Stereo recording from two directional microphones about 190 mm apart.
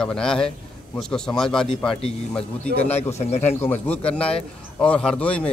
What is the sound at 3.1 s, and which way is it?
Speech, 35° left (ahead or behind).